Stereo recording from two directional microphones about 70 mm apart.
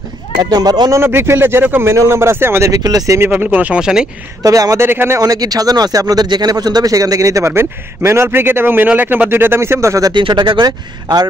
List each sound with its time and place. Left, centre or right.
0.4 s speech: right
0.9 s a man's voice: right
2.7 s speech: right
3.2 s speech: right
3.4 s speech: centre
4.4 s speech: right
4.7 s a man's voice: right
5.2 s speech: right
7.5 s a man's voice: right
10.3 s speech: right